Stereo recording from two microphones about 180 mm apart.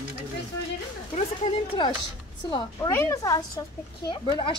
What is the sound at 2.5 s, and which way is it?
A woman's voice, 20° left (ahead or behind).